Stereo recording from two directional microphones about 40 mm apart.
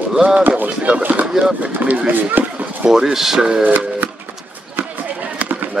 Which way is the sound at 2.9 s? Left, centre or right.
Centre.